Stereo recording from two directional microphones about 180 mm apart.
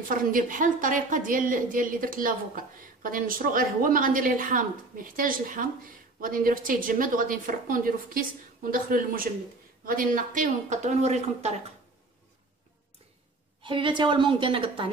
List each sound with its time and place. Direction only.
0.1 s a woman's voice: 50° right (ahead or behind)
13.6 s a woman's voice: 30° right (ahead or behind)